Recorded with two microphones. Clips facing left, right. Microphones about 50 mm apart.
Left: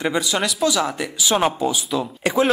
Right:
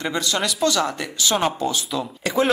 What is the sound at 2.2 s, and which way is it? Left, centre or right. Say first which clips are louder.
Speech: left 2 dB; left.